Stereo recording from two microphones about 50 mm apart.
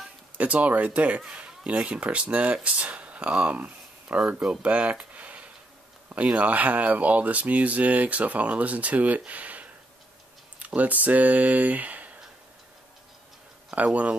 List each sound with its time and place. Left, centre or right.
0.4 s speech: right
4.4 s speech: right
9.2 s a sound: right
10.6 s speech: right
13.7 s speech: right